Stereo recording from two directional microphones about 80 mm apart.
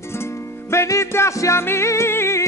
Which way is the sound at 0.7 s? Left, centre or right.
Left.